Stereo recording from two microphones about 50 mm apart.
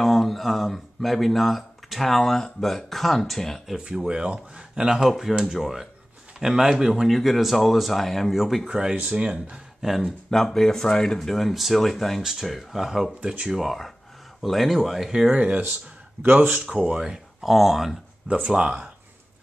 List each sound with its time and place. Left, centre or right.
0.0 s speech: centre
3.7 s speech: centre
7.1 s speech: centre
8.6 s speech: centre
10.3 s speech: centre
13.2 s speech: right
13.5 s speech: centre
15.3 s speech: right
16.8 s speech: centre
18.3 s speech: centre